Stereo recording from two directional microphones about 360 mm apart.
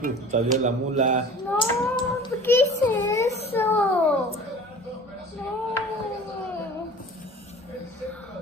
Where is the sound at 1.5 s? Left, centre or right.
Centre.